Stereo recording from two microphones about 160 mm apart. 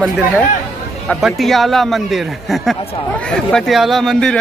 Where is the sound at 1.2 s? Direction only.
Centre (ahead or behind).